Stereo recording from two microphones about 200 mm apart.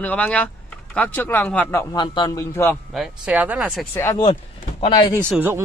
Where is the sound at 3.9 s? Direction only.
15° left (ahead or behind).